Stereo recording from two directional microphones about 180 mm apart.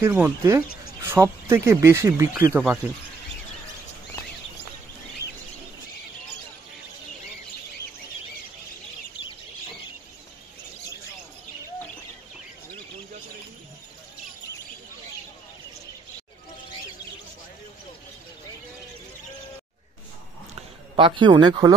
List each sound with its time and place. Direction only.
0.0 s speech: 15° right (ahead or behind)
20.9 s speech: 30° right (ahead or behind)